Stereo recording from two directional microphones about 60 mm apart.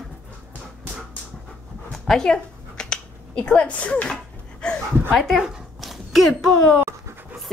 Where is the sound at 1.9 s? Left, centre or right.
Centre.